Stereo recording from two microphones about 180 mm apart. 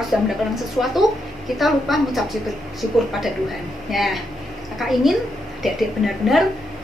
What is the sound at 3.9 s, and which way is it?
A woman's voice, centre (ahead or behind).